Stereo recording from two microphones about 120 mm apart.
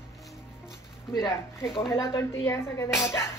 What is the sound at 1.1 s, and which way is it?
Speech, 35° left (ahead or behind).